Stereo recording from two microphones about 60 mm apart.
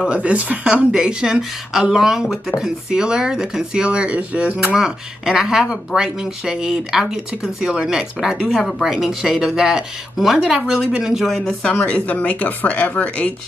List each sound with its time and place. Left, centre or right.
0.1 s speech: right; by 11.5 s centre
11.8 s speech: left